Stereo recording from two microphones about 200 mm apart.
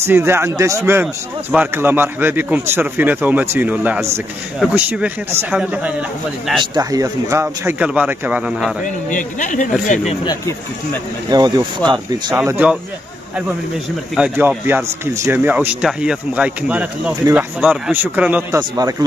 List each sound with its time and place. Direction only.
0.0 s speech: 10° right (ahead or behind)
6.6 s speech: 20° right (ahead or behind); by 8.7 s 5° right (ahead or behind)
8.8 s speech: 40° left (ahead or behind)
10.2 s speech: 15° left (ahead or behind)
11.2 s speech: 20° right (ahead or behind)
12.4 s speech: 10° right (ahead or behind)
14.1 s speech: 10° right (ahead or behind)
18.6 s speech: 20° right (ahead or behind)